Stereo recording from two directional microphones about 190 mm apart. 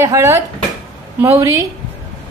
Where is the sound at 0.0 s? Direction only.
15° right (ahead or behind).